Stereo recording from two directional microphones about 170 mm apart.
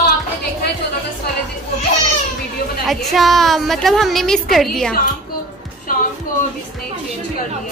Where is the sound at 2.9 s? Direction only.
Centre (ahead or behind).